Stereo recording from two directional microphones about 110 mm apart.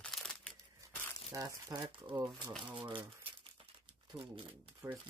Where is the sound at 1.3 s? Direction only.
35° right (ahead or behind).